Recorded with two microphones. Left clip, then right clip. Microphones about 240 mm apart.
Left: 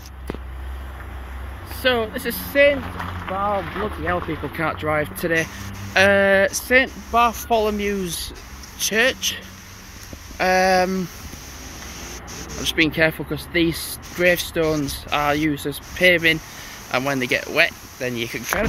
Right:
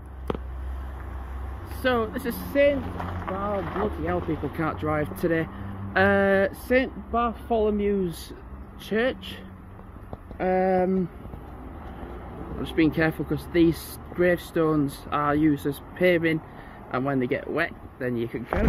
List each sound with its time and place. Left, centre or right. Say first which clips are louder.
1.8 s speech: left 4 dB; centre
2.5 s speech: left 5 dB; centre
3.0 s speech: left 6 dB; left
4.6 s speech: left 6 dB; centre
6.8 s speech: left 8 dB; centre
8.8 s speech: left 7 dB; centre
12.6 s speech: left 5 dB; centre